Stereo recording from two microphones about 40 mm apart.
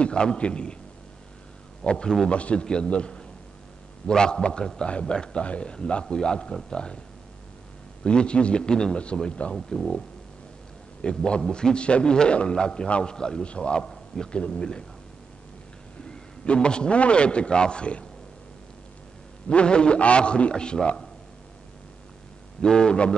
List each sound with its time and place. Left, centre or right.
0.0 s a man's voice: left
1.8 s a man's voice: left
8.0 s a man's voice: left
11.0 s a man's voice: left
16.1 s a man's voice: left
19.5 s a man's voice: left
22.6 s a man's voice: left